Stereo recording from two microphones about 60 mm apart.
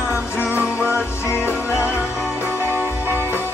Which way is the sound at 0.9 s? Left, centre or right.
Left.